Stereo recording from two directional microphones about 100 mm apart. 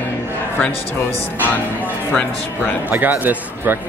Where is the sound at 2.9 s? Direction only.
15° right (ahead or behind).